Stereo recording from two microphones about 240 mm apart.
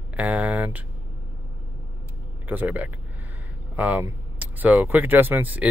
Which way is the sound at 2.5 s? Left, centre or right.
Centre.